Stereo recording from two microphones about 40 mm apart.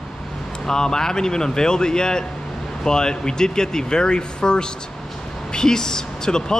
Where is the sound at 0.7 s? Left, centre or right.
Centre.